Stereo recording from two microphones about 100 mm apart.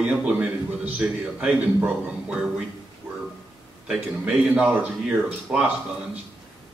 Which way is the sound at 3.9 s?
15° right (ahead or behind).